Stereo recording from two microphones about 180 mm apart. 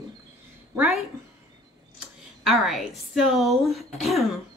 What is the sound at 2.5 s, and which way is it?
A woman's voice, centre (ahead or behind).